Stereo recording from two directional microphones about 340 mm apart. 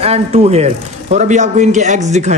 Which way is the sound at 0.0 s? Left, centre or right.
Centre.